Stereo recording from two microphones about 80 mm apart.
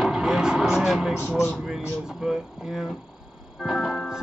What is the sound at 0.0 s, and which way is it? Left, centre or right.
Vehicle, centre.